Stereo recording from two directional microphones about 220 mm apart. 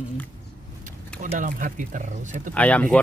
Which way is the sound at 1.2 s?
35° right (ahead or behind).